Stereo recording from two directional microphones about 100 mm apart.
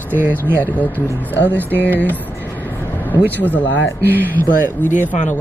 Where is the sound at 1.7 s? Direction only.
15° left (ahead or behind).